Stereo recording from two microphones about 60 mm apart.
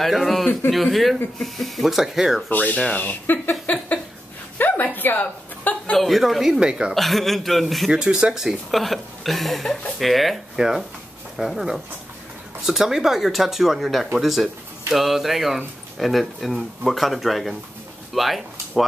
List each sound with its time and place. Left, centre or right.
0.0 s speech: centre
2.5 s speech: left
4.6 s a sound: left
5.9 s speech: centre
6.6 s speech: centre
6.9 s speech: centre
7.9 s speech: centre
18.1 s a sound: centre